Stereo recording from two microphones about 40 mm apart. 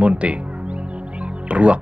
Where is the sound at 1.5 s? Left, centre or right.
Right.